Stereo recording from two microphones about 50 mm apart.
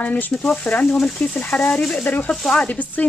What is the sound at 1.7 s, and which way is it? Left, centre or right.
Speech, centre.